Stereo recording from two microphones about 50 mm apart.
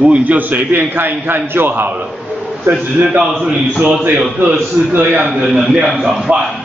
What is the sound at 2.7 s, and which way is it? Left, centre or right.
Speech, right.